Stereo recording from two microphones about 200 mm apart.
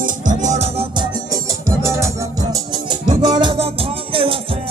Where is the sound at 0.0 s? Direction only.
35° right (ahead or behind).